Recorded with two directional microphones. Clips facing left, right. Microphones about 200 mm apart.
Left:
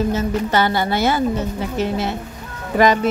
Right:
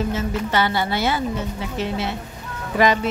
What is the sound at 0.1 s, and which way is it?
A woman's voice, 40° left (ahead or behind).